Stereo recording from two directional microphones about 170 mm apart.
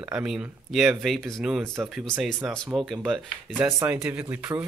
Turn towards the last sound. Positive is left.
turn(degrees=-15)  # may be behind; listen again after turning